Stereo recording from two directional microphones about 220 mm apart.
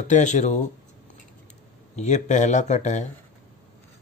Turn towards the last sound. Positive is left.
turn(degrees=30)  # may be behind; listen again after turning